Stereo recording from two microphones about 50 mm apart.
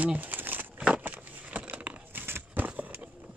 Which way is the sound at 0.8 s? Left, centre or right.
Right.